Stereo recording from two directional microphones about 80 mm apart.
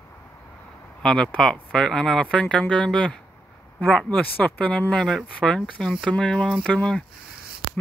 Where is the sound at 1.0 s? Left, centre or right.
Centre.